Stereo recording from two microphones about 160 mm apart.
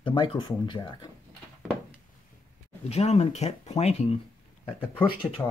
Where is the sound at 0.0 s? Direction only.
30° left (ahead or behind).